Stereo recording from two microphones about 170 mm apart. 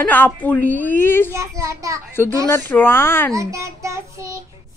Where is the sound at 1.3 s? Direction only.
15° right (ahead or behind).